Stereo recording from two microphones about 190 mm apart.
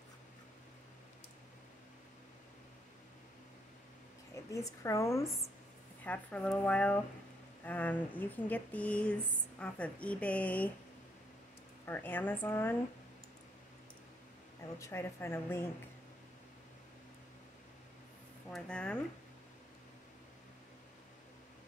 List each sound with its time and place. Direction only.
4.5 s speech: 15° left (ahead or behind)
11.8 s speech: 10° left (ahead or behind)
14.8 s speech: 15° left (ahead or behind)
18.5 s speech: 5° left (ahead or behind)